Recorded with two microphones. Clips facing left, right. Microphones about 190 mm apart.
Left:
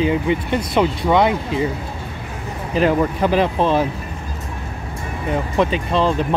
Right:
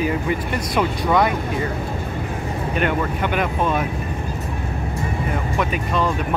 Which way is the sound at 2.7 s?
30° left (ahead or behind).